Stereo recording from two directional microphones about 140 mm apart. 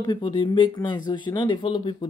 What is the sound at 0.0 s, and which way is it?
Speech, 35° left (ahead or behind).